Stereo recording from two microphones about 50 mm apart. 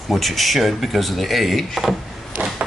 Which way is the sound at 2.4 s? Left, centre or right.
Right.